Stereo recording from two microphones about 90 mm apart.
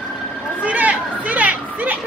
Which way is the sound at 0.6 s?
15° right (ahead or behind).